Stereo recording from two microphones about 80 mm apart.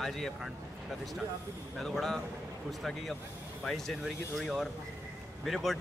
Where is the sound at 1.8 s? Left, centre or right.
Centre.